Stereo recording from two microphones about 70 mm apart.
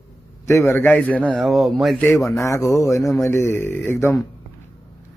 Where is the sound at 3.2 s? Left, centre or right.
Left.